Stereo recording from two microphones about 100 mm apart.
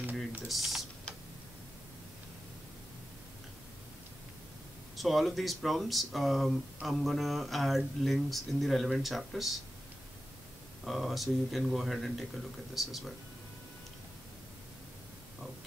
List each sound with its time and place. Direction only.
0.0 s typing: 15° right (ahead or behind)
0.5 s speech: centre (ahead or behind)
4.9 s speech: centre (ahead or behind)
10.9 s speech: centre (ahead or behind)